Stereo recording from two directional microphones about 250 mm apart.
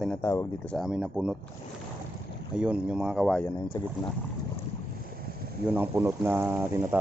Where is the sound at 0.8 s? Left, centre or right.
Centre.